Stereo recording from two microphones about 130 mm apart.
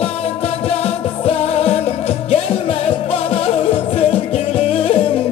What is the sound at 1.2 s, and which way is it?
Music, 50° left (ahead or behind).